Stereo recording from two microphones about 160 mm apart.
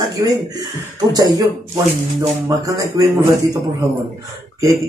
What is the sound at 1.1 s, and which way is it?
Speech, 25° right (ahead or behind).